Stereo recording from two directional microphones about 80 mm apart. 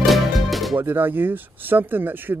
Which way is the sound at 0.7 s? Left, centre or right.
Right.